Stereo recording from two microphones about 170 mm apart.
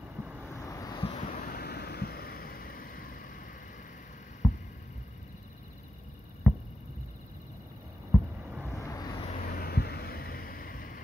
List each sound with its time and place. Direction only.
0.2 s vehicle: 5° right (ahead or behind)
0.5 s vehicle: 20° left (ahead or behind)
1.1 s vehicle: 45° left (ahead or behind)
1.4 s a sound: 65° left (ahead or behind)
4.4 s a sound: 5° right (ahead or behind)
6.5 s hum: centre (ahead or behind)
8.6 s vehicle: 15° left (ahead or behind)
9.4 s vehicle: 60° left (ahead or behind)